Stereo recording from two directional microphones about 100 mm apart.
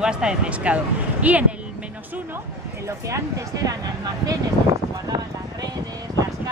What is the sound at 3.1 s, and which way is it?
Speech, 35° right (ahead or behind).